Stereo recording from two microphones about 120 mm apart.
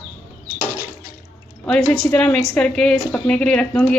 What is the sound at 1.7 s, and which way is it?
A woman's voice, 10° left (ahead or behind).